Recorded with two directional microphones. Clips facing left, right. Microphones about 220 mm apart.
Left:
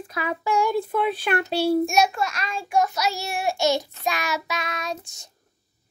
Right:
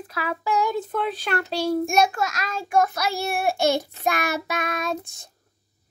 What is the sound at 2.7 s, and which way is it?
Child singing, 55° right (ahead or behind).